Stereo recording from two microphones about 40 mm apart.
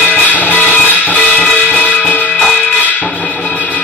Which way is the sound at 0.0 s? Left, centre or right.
Left.